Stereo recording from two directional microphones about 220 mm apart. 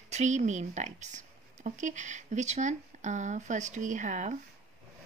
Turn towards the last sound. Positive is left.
turn(degrees=-35)  # may be behind; listen again after turning